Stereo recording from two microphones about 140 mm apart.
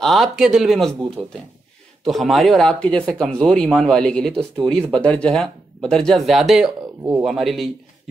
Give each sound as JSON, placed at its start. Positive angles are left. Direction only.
{"t": 0.0, "sound": "speech", "side_deg": 0}
{"t": 7.0, "sound": "speech", "side_deg": -20}
{"t": 7.2, "sound": "speech", "side_deg": 0}